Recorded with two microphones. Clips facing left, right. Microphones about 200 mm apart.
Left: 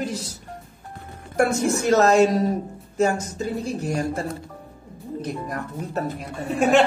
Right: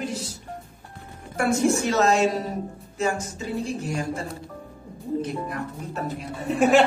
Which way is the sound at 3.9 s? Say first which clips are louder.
Left 3 dB; 40° left (ahead or behind).